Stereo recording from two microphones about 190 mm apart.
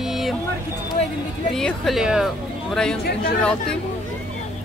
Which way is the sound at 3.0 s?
55° left (ahead or behind).